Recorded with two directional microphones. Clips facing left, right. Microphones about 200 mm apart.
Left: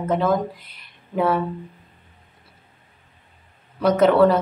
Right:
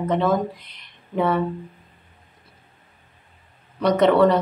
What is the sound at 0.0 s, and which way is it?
Speech, centre (ahead or behind).